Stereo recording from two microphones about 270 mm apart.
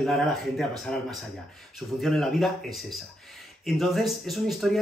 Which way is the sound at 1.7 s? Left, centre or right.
Centre.